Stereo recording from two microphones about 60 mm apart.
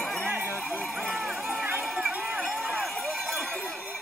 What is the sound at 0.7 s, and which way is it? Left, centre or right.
Run, centre.